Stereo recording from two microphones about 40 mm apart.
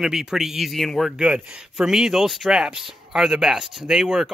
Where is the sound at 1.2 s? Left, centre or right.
Right.